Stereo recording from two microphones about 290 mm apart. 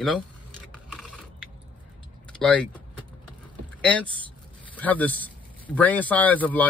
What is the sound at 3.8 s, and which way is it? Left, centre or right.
A man's voice, centre.